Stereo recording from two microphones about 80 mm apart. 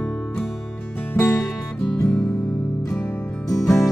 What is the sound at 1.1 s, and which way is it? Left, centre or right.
Music, left.